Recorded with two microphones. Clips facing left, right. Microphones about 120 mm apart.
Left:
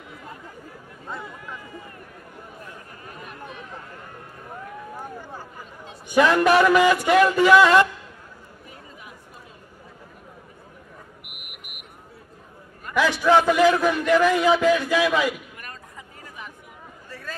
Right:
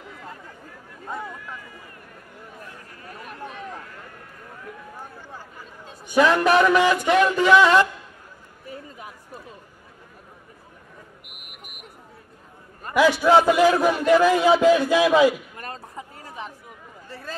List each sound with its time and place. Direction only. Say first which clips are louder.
6.1 s speech: even; centre (ahead or behind)
11.3 s buzzer: even; 35° right (ahead or behind)
12.9 s a man's voice: right 2 dB; 10° right (ahead or behind)
13.7 s speech: right 1 dB; 30° right (ahead or behind)
14.7 s a sound: right 3 dB; 30° right (ahead or behind)